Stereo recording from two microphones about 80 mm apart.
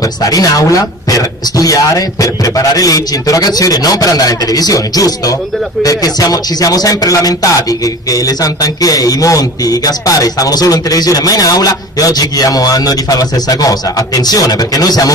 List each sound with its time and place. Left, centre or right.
0.0 s speech: left